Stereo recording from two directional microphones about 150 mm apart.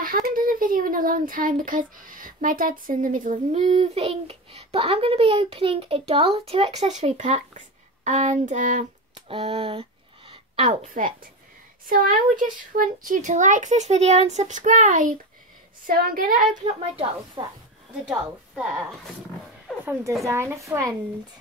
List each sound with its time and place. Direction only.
0.0 s speech: 70° right (ahead or behind)
3.5 s a child's voice: 40° right (ahead or behind); by 8.8 s 55° right (ahead or behind)
9.1 s a sound: 40° right (ahead or behind)
10.7 s speech: 55° right (ahead or behind)
15.9 s speech: 75° right (ahead or behind)
16.9 s a child's voice: 40° right (ahead or behind)
19.8 s a woman's voice: 15° right (ahead or behind)